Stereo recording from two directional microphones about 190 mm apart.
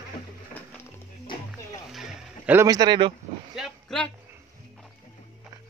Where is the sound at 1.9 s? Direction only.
10° right (ahead or behind).